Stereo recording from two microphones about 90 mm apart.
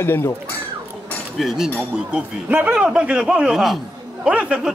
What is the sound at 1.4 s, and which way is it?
Speech, 5° right (ahead or behind).